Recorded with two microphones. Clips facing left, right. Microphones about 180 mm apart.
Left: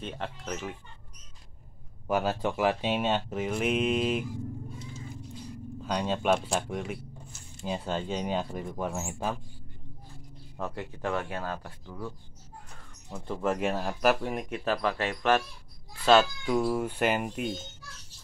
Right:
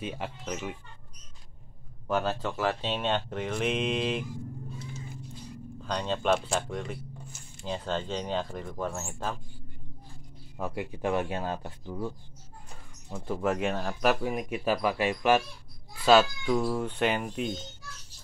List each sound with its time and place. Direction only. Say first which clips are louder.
0.0 s speech: right 1 dB; 5° right (ahead or behind)
2.0 s speech: left 1 dB; 10° left (ahead or behind)
5.9 s speech: left 1 dB; 10° left (ahead or behind)
10.6 s speech: right 2 dB; 15° right (ahead or behind)
13.1 s speech: right 1 dB; 5° right (ahead or behind)
16.5 s speech: left 2 dB; 10° left (ahead or behind)